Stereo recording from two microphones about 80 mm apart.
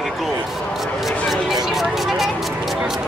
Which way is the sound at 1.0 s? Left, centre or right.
Centre.